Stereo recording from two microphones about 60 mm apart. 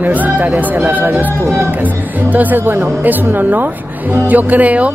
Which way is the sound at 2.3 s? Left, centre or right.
Right.